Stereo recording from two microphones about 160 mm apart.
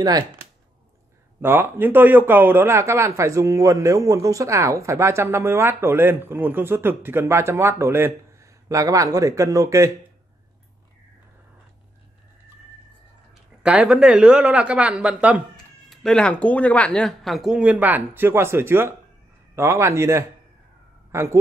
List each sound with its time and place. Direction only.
1.4 s speech: 15° right (ahead or behind)
13.3 s speech: 5° right (ahead or behind)